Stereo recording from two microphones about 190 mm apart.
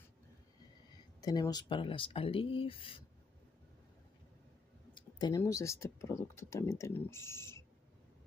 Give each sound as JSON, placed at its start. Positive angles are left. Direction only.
{"t": 1.2, "sound": "speech", "side_deg": 20}
{"t": 4.9, "sound": "speech", "side_deg": 20}